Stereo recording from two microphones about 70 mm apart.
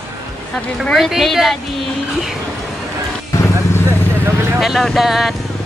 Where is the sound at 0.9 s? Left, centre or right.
Centre.